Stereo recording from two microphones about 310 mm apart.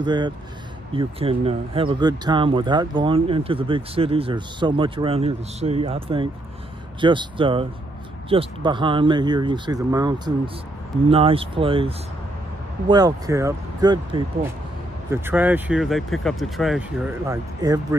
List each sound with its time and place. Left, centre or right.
0.0 s speech: centre